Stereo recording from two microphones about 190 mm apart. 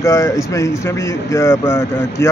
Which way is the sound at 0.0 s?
15° left (ahead or behind).